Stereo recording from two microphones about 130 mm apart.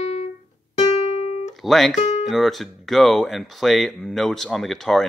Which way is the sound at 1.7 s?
Centre (ahead or behind).